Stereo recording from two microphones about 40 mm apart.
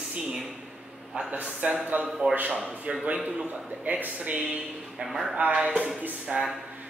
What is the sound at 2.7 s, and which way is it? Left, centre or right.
Speech, right.